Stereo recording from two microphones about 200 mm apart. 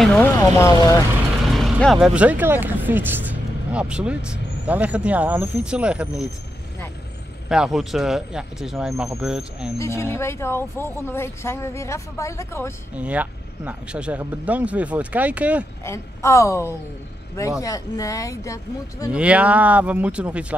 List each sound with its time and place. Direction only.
0.0 s speech: centre (ahead or behind)
0.4 s speech: 15° left (ahead or behind)
1.5 s speech: centre (ahead or behind)
7.4 s speech: 5° right (ahead or behind)
9.8 s speech: 15° left (ahead or behind)
12.9 s speech: 5° right (ahead or behind)
15.8 s speech: 15° left (ahead or behind)
19.0 s speech: 5° right (ahead or behind)